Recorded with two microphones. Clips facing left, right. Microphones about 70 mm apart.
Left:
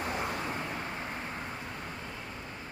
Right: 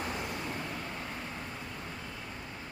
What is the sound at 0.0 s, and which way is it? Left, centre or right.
Vehicle, left.